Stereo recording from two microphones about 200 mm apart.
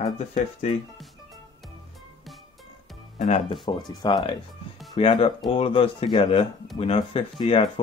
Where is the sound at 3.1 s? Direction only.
35° left (ahead or behind).